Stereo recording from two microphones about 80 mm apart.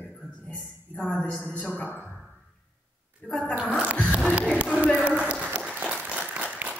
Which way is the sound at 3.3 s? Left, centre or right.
Centre.